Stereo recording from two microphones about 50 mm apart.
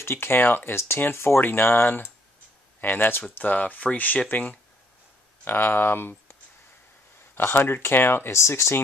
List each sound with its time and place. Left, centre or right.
0.0 s speech: left
0.7 s speech: left
1.4 s speech: left
3.3 s speech: left
5.4 s speech: left
7.3 s speech: left